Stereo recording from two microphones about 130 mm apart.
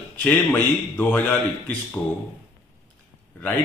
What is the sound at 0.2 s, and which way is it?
A man's voice, 10° left (ahead or behind).